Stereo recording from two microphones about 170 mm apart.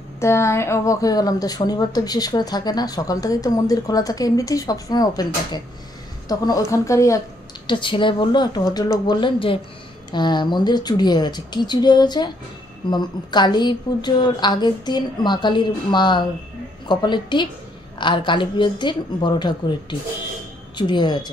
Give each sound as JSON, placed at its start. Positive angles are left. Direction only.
{"t": 0.2, "sound": "a woman's voice", "side_deg": 15}
{"t": 7.6, "sound": "a woman's voice", "side_deg": 30}